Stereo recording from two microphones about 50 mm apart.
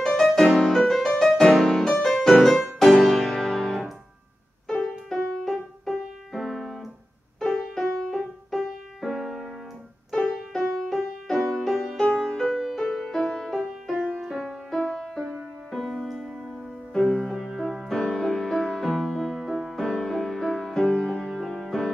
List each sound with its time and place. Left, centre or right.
0.0 s music: centre
10.5 s music: centre
12.1 s music: centre
12.4 s music: centre
14.4 s music: centre
20.0 s music: centre